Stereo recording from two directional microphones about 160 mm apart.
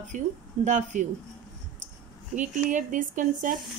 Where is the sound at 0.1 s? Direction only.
50° right (ahead or behind).